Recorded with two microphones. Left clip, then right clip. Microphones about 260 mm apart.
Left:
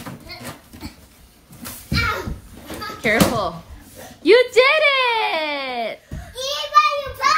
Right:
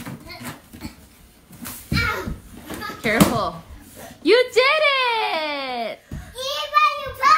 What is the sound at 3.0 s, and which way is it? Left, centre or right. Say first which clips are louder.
Bouncing: left 1 dB; centre.